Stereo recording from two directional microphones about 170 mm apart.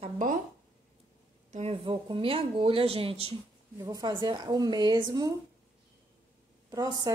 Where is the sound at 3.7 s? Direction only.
20° right (ahead or behind).